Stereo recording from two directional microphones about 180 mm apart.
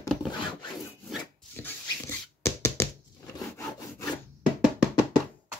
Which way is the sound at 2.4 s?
15° left (ahead or behind).